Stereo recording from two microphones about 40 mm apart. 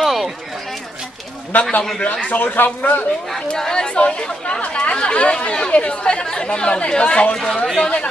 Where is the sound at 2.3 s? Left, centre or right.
Left.